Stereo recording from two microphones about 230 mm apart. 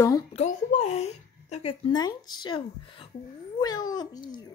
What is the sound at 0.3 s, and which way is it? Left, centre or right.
Speech, left.